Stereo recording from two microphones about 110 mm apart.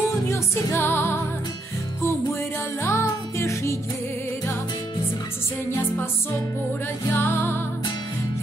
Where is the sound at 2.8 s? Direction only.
25° left (ahead or behind).